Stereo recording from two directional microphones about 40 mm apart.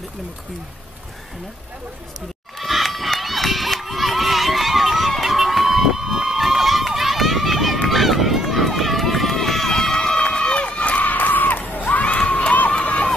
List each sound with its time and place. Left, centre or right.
2.6 s run: centre
10.1 s run: left
11.0 s crowd: left